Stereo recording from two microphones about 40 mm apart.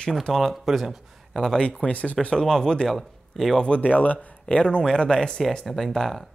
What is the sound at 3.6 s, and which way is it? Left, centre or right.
Speech, left.